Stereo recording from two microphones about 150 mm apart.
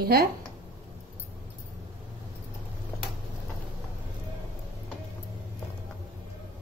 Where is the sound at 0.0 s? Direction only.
85° right.